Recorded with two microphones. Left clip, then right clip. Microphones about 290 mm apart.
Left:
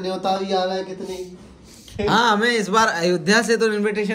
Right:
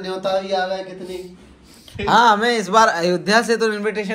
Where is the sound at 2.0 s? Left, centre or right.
Centre.